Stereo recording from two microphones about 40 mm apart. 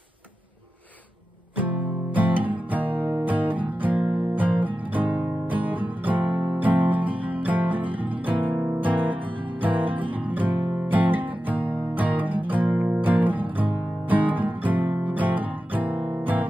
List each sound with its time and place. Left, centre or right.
1.6 s music: right
6.3 s music: right
6.6 s music: right